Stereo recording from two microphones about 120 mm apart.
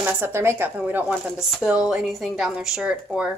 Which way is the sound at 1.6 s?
5° right (ahead or behind).